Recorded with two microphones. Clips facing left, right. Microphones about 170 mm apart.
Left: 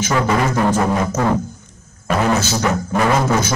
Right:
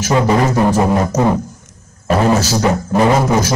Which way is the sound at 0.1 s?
20° right (ahead or behind).